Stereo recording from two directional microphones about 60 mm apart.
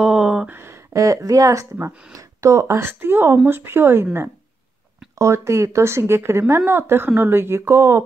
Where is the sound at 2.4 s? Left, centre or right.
Right.